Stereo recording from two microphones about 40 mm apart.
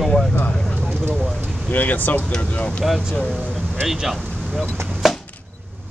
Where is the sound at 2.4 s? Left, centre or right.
Left.